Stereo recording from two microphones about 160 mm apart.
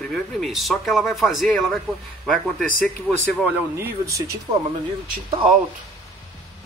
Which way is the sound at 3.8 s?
15° right (ahead or behind).